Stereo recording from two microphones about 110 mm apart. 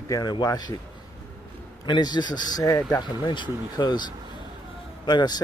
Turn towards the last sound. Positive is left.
turn(degrees=40)  # may be behind; listen again after turning